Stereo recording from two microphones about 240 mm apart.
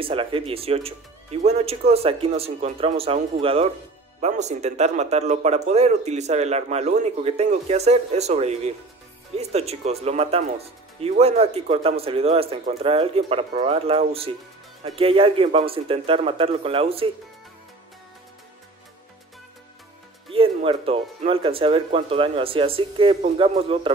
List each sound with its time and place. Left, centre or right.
0.0 s speech: right
20.2 s speech: right